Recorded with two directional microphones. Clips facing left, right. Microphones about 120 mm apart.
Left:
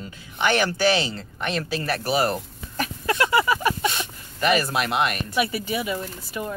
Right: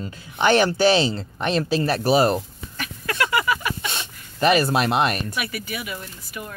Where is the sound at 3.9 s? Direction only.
30° right (ahead or behind).